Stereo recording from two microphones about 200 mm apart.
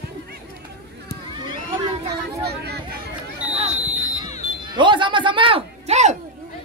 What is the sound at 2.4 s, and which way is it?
Speech, 55° right (ahead or behind).